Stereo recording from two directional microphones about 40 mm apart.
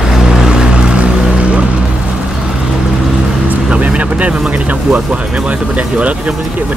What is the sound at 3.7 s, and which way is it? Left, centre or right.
Vehicle, right.